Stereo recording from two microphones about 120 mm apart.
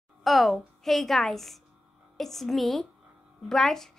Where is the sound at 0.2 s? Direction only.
Centre (ahead or behind).